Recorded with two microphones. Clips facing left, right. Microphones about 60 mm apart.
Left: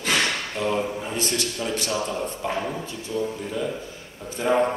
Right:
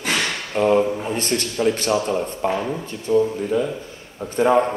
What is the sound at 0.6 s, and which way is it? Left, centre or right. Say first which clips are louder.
A man's voice: right 9 dB; right.